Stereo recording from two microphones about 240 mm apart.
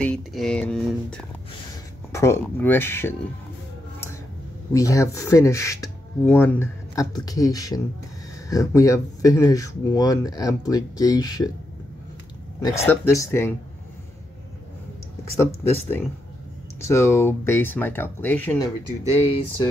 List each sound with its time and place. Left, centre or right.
0.0 s speech: centre
4.7 s speech: centre
12.5 s speech: centre
15.3 s speech: centre
19.2 s speech: left